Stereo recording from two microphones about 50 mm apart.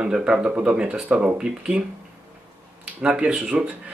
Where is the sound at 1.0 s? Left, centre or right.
Right.